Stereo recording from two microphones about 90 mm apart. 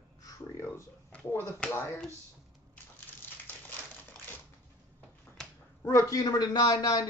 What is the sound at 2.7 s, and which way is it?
Crushing, 20° left (ahead or behind).